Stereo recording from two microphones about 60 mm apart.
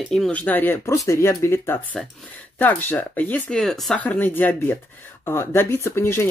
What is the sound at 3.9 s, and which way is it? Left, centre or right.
Speech, left.